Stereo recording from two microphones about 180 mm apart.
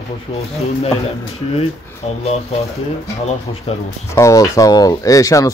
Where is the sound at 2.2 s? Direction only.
35° left (ahead or behind).